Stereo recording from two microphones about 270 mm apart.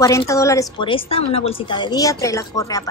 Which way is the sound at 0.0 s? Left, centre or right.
Centre.